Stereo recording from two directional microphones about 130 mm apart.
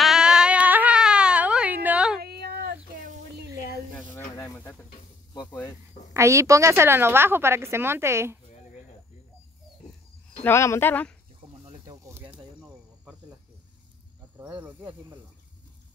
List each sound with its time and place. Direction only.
0.0 s baby cry: 5° right (ahead or behind)
3.9 s snake: 15° left (ahead or behind)
6.1 s a woman's voice: 25° right (ahead or behind)
10.4 s speech: 20° left (ahead or behind)
11.6 s snake: 35° right (ahead or behind)
12.1 s snake: 15° right (ahead or behind)
14.4 s speech: 15° right (ahead or behind)